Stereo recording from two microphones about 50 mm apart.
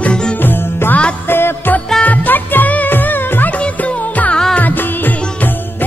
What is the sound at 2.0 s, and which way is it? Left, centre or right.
Music, left.